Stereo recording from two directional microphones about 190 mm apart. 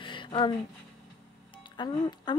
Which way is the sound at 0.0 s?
25° left (ahead or behind).